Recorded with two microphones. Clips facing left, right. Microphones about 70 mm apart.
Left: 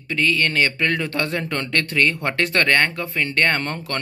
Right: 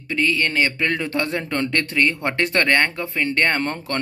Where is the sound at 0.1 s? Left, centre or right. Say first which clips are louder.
Even; centre.